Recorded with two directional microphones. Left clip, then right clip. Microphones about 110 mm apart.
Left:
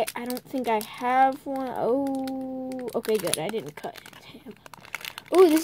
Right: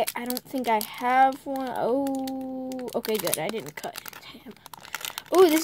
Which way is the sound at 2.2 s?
20° right (ahead or behind).